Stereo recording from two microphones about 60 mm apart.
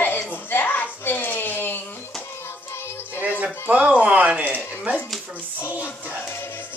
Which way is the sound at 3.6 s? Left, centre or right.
Right.